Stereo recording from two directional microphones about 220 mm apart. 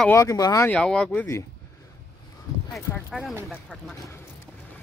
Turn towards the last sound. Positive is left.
turn(degrees=0)  # may be behind; listen again after turning